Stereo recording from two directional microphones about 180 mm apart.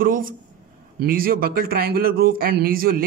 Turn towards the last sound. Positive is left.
turn(degrees=-55)  # may be behind; listen again after turning